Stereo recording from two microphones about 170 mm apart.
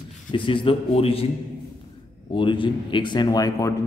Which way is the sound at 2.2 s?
30° left (ahead or behind).